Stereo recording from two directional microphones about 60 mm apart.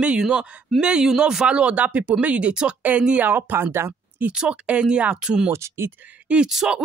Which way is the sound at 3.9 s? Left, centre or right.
Right.